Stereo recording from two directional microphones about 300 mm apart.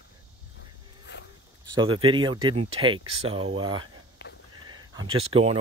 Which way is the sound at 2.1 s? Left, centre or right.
Centre.